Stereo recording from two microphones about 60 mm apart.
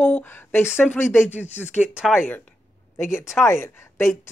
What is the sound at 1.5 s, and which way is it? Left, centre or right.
Speech, centre.